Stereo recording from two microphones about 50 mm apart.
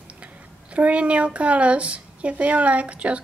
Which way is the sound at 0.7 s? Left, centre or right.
Right.